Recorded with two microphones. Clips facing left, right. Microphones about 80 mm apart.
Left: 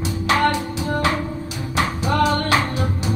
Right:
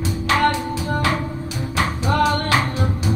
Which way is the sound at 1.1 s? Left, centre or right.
Right.